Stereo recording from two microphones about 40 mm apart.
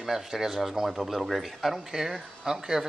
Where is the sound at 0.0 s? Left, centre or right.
Centre.